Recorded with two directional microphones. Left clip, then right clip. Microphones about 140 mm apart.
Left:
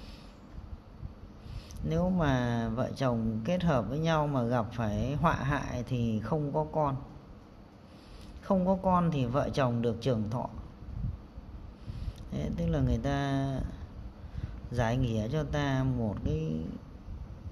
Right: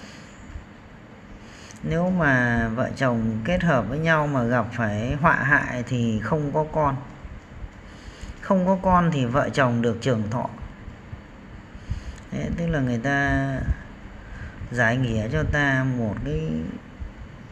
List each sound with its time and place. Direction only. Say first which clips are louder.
1.9 s speech: right 9 dB; 25° left (ahead or behind)
8.5 s a woman's voice: right 7 dB; 20° left (ahead or behind)
12.3 s speech: right 7 dB; 25° left (ahead or behind)
14.7 s speech: right 10 dB; 25° left (ahead or behind)